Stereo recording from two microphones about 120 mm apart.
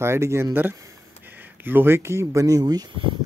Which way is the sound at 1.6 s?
15° right (ahead or behind).